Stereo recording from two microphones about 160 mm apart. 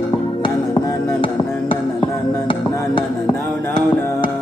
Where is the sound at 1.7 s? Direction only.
30° left (ahead or behind).